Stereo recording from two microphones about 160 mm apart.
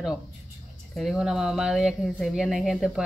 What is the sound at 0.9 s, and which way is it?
Speech, centre (ahead or behind).